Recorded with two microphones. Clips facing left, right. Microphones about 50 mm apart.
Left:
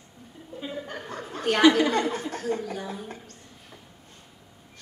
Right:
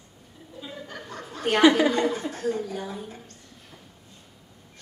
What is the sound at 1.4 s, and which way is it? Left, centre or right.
Speech, right.